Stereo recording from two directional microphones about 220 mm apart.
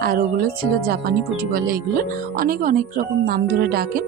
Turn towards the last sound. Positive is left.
turn(degrees=-45)  # may be behind; listen again after turning